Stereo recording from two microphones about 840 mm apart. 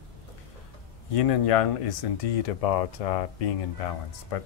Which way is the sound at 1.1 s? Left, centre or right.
Left.